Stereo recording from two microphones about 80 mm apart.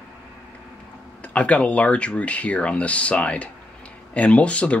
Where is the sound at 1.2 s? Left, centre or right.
Centre.